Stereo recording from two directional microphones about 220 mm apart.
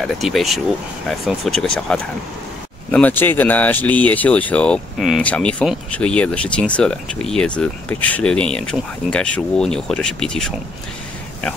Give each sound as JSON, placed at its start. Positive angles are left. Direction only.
{"t": 0.0, "sound": "speech", "side_deg": 0}